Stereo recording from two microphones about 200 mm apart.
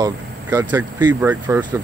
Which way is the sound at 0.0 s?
10° right (ahead or behind).